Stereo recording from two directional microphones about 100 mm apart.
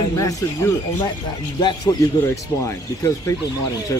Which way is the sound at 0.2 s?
30° left (ahead or behind).